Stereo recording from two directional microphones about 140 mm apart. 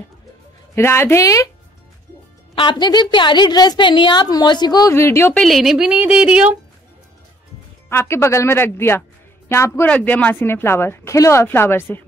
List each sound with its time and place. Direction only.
0.7 s a woman's voice: 15° left (ahead or behind)
2.5 s a woman's voice: 35° left (ahead or behind)
4.9 s speech: 20° left (ahead or behind)
5.4 s speech: centre (ahead or behind)
7.9 s speech: 20° left (ahead or behind)